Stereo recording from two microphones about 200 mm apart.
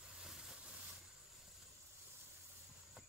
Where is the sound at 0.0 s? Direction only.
5° right (ahead or behind).